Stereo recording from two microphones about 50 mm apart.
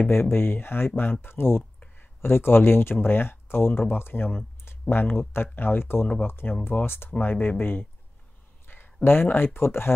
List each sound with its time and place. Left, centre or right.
0.1 s speech: left